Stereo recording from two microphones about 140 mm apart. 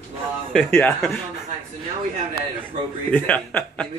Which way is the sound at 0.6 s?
15° left (ahead or behind).